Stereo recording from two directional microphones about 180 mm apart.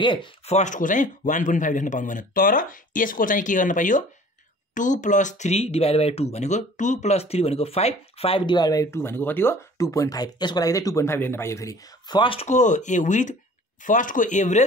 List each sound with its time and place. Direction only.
0.0 s speech: 25° left (ahead or behind)
0.6 s a man's voice: 45° left (ahead or behind)